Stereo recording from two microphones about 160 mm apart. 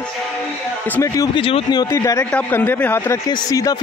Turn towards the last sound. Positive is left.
turn(degrees=20)  # may be behind; listen again after turning